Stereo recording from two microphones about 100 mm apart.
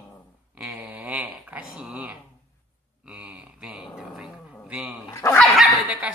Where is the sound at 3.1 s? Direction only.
15° right (ahead or behind).